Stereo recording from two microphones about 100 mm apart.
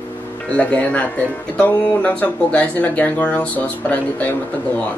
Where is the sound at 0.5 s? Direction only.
15° left (ahead or behind).